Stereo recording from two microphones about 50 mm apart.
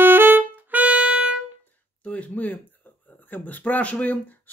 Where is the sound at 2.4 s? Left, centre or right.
Left.